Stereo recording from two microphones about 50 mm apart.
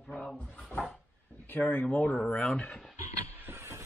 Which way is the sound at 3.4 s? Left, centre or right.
Right.